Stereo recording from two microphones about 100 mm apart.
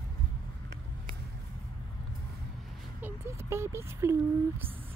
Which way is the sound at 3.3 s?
30° right (ahead or behind).